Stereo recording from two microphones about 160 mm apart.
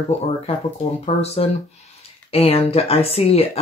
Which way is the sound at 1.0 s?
40° left (ahead or behind).